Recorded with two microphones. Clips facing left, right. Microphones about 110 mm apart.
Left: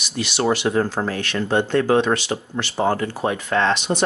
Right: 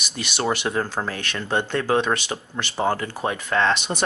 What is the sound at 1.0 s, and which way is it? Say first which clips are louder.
Speech: left 3 dB; 30° left (ahead or behind).